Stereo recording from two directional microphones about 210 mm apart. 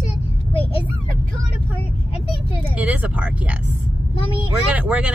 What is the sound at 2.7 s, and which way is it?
Speech, 5° right (ahead or behind).